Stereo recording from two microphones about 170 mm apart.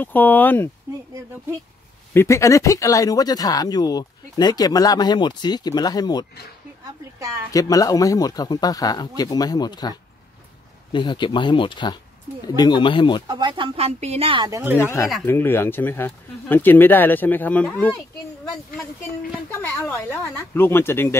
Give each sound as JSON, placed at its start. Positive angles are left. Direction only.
{"t": 0.0, "sound": "speech", "side_deg": 10}
{"t": 2.1, "sound": "speech", "side_deg": 15}
{"t": 7.5, "sound": "speech", "side_deg": 20}
{"t": 13.3, "sound": "speech", "side_deg": -25}
{"t": 14.5, "sound": "speech", "side_deg": -15}
{"t": 14.8, "sound": "speech", "side_deg": 15}
{"t": 19.6, "sound": "speech", "side_deg": 10}